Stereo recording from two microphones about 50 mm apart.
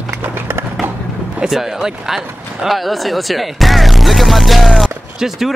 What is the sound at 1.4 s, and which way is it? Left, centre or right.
Speech, centre.